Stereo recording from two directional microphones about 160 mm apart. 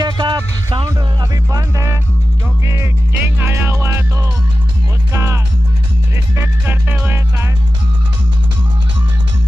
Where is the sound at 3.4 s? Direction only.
15° right (ahead or behind).